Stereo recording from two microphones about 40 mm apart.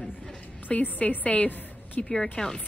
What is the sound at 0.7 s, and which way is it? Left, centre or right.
Speech, left.